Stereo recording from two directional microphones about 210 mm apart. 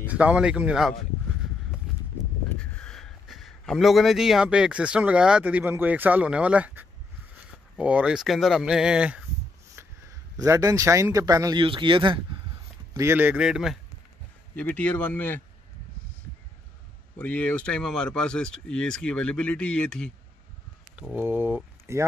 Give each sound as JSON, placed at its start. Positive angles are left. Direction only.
{"t": 0.0, "sound": "speech", "side_deg": -5}
{"t": 2.2, "sound": "a sound", "side_deg": 0}
{"t": 2.6, "sound": "a man's voice", "side_deg": 5}
{"t": 10.3, "sound": "speech", "side_deg": -15}
{"t": 12.9, "sound": "speech", "side_deg": -10}
{"t": 17.2, "sound": "speech", "side_deg": 5}
{"t": 20.9, "sound": "speech", "side_deg": -5}